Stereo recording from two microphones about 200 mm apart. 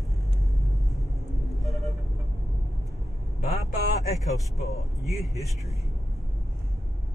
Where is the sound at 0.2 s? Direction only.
15° left (ahead or behind).